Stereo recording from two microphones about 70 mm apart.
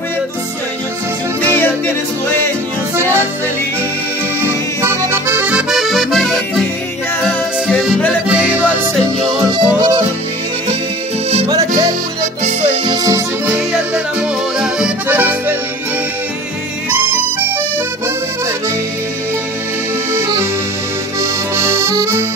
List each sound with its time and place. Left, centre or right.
4.4 s accordion: right
5.7 s accordion: centre
7.2 s music: centre
8.3 s music: centre
9.5 s music: right
11.4 s music: right
12.8 s music: right
15.0 s accordion: right
20.1 s accordion: right